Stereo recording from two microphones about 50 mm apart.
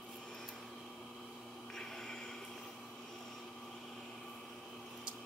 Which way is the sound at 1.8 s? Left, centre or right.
Centre.